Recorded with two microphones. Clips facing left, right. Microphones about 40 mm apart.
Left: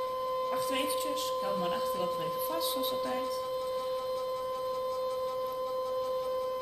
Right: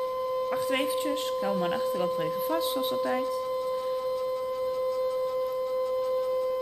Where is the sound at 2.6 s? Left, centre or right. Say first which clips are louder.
Right 4 dB; right.